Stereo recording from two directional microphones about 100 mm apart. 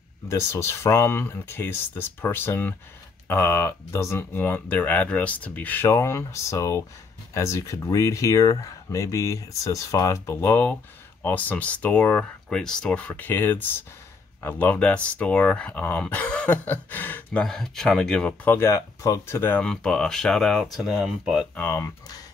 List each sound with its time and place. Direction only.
0.3 s speech: 25° left (ahead or behind)
17.4 s speech: 5° left (ahead or behind)
18.5 s speech: 25° left (ahead or behind)
19.6 s speech: 5° left (ahead or behind)
21.5 s speech: 25° left (ahead or behind)